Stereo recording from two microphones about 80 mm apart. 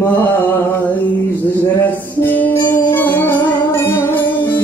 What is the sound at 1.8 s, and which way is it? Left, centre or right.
Music, left.